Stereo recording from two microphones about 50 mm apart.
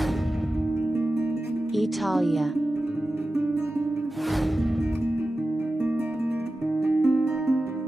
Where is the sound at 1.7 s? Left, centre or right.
Centre.